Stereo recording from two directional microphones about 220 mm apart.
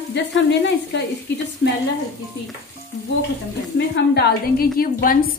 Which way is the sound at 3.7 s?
50° left (ahead or behind).